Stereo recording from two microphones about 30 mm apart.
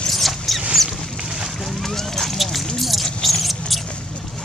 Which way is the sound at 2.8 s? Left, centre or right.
Centre.